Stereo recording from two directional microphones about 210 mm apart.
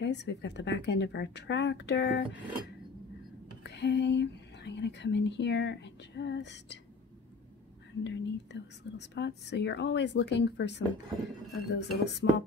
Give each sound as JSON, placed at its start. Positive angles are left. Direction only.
{"t": 0.0, "sound": "speech", "side_deg": 55}
{"t": 3.6, "sound": "speech", "side_deg": 55}
{"t": 8.0, "sound": "speech", "side_deg": 55}